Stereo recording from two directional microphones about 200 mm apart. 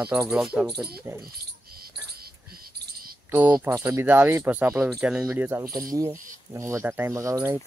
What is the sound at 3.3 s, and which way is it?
Speech, 10° right (ahead or behind).